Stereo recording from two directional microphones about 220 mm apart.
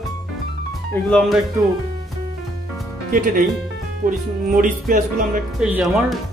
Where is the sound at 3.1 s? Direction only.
40° right (ahead or behind).